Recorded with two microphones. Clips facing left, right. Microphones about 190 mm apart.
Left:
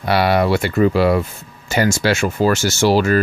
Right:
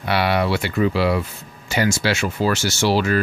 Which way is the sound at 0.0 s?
40° left (ahead or behind).